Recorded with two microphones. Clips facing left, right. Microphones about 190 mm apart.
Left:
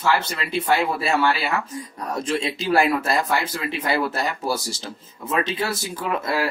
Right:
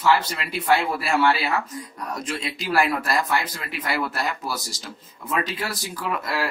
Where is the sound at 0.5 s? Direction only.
25° left (ahead or behind).